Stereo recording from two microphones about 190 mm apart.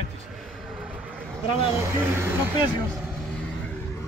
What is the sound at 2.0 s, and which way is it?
Speech, 15° right (ahead or behind).